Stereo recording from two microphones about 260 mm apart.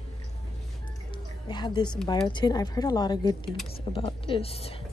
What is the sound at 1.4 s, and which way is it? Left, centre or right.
Speech, centre.